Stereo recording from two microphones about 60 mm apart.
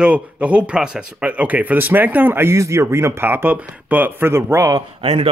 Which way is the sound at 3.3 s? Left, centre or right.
Right.